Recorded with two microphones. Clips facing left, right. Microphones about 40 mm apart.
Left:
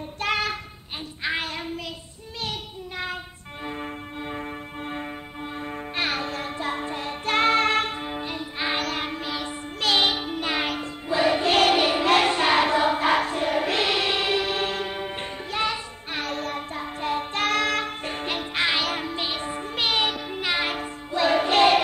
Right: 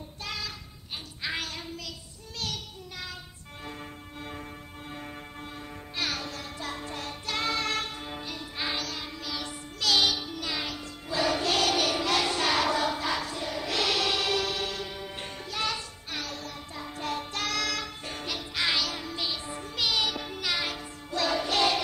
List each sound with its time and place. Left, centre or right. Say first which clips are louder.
0.2 s child singing: left 12 dB; left
1.2 s child singing: left 6 dB; left
3.6 s music: left 9 dB; left
7.2 s music: left 10 dB; left
8.7 s child singing: left 8 dB; left
11.1 s choir: left 6 dB; left
16.2 s music: left 9 dB; left
17.0 s music: left 7 dB; left